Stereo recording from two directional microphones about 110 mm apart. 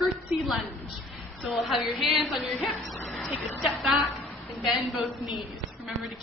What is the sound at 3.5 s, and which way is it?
A woman's voice, centre (ahead or behind).